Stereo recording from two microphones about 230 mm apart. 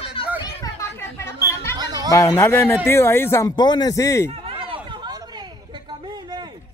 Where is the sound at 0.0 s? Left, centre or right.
Left.